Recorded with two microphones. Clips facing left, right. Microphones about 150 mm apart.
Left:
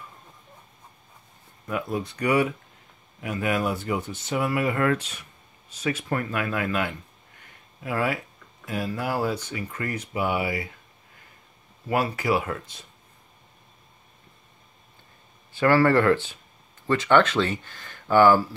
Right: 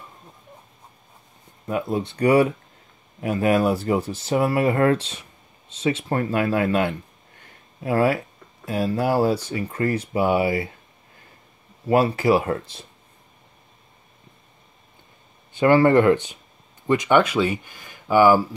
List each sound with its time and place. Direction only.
1.7 s speech: 25° right (ahead or behind)
11.8 s speech: 30° right (ahead or behind)
15.5 s speech: 20° right (ahead or behind)